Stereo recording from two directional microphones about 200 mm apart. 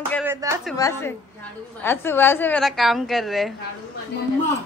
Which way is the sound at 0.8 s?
15° left (ahead or behind).